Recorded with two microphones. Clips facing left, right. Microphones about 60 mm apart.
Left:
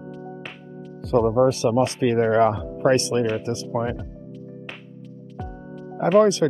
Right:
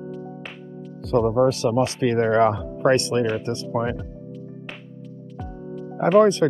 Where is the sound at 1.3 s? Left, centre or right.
Left.